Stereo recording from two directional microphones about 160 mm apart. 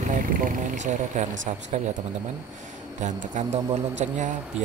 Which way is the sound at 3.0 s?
50° right (ahead or behind).